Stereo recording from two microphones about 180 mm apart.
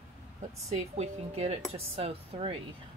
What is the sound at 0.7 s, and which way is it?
Speech, 40° right (ahead or behind).